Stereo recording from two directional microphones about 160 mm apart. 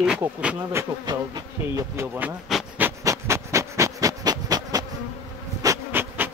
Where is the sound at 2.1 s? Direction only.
10° right (ahead or behind).